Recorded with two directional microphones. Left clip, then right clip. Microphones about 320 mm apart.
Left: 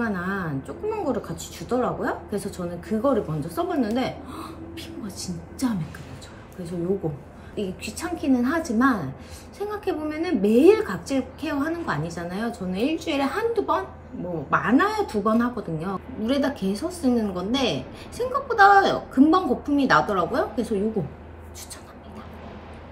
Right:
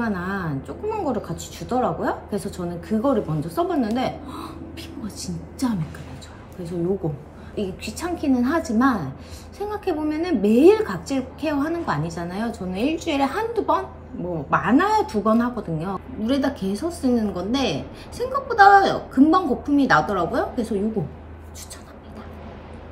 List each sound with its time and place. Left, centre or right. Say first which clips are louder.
0.0 s a woman's voice: right 1 dB; centre
7.5 s a woman's voice: right 2 dB; centre